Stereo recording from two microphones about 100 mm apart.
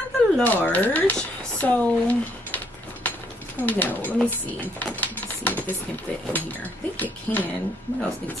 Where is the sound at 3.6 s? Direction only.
15° left (ahead or behind).